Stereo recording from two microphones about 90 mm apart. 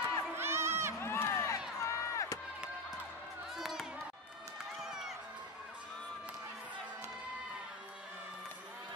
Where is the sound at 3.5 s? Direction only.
Centre (ahead or behind).